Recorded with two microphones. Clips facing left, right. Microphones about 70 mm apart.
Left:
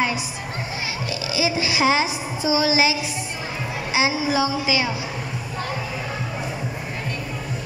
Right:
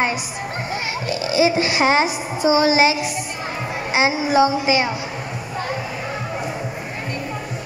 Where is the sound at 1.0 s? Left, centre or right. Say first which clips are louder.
Right 7 dB; right.